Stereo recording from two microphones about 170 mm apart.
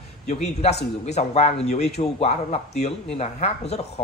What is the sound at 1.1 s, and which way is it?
Speech, 40° left (ahead or behind).